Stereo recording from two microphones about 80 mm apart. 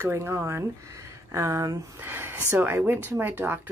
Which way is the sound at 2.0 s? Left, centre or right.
Right.